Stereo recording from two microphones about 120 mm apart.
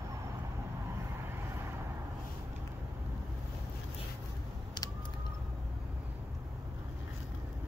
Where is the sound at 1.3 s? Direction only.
20° right (ahead or behind).